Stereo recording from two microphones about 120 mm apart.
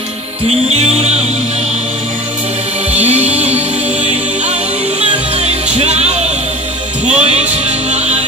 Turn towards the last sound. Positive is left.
turn(degrees=-60)  # may be behind; listen again after turning